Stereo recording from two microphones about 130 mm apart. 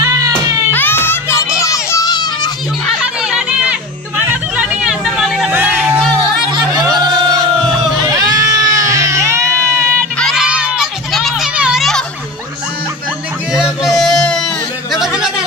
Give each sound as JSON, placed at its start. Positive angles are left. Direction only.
{"t": 0.7, "sound": "music", "side_deg": 15}
{"t": 3.0, "sound": "music", "side_deg": -5}
{"t": 4.3, "sound": "hubbub", "side_deg": -10}
{"t": 5.5, "sound": "music", "side_deg": -15}
{"t": 6.5, "sound": "crowd", "side_deg": -30}
{"t": 8.0, "sound": "baby cry", "side_deg": -30}
{"t": 10.1, "sound": "crowd", "side_deg": 0}
{"t": 13.9, "sound": "a sound", "side_deg": 5}